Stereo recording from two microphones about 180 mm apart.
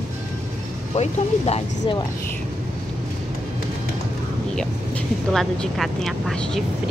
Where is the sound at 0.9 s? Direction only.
35° left (ahead or behind).